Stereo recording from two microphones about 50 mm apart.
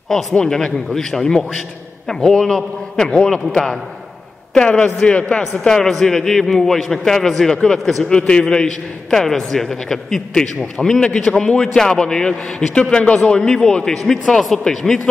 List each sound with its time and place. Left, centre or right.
0.1 s a man's voice: centre
4.6 s a man's voice: centre